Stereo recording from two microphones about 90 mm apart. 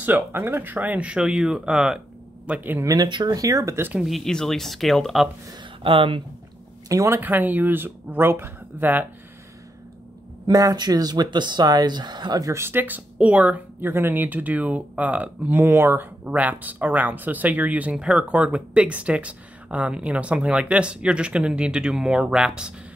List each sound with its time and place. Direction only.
0.0 s speech: 20° right (ahead or behind)
2.4 s speech: 20° right (ahead or behind)
2.8 s speech: 40° right (ahead or behind)
3.1 s speech: 60° right (ahead or behind)
3.3 s speech: 35° right (ahead or behind)
4.0 s speech: centre (ahead or behind)
5.8 s speech: 75° right (ahead or behind)
6.9 s speech: 40° right (ahead or behind)
7.2 s speech: 20° right (ahead or behind)
10.4 s speech: 45° right (ahead or behind)
12.5 s speech: 25° right (ahead or behind); by 22.8 s 10° right (ahead or behind)